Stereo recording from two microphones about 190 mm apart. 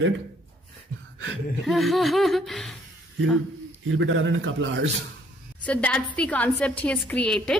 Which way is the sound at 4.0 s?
85° right.